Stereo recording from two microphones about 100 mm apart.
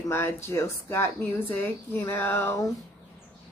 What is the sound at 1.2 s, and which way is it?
Speech, 15° left (ahead or behind).